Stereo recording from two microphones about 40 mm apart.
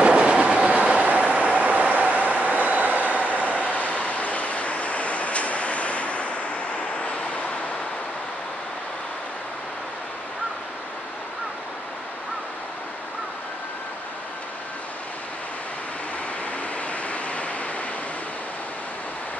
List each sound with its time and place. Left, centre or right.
0.0 s train: right
0.6 s vehicle: right
3.2 s vehicle: left
16.9 s vehicle: left